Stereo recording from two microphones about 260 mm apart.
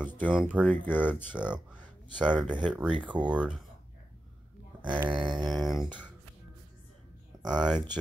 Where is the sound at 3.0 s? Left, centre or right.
Centre.